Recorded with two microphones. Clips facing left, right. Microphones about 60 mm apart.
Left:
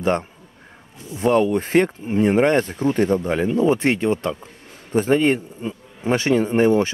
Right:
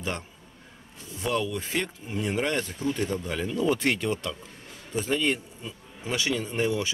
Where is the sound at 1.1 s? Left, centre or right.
Left.